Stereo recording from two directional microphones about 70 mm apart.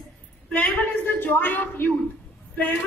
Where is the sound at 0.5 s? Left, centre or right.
Centre.